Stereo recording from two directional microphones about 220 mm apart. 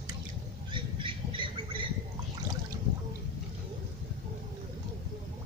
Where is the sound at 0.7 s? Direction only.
20° right (ahead or behind).